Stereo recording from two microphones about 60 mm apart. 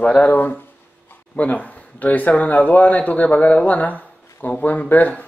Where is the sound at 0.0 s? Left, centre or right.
Left.